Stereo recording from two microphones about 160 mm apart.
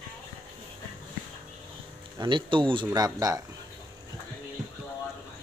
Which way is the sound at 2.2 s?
30° right (ahead or behind).